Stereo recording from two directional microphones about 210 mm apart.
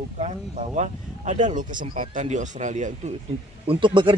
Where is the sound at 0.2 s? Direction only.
35° right (ahead or behind).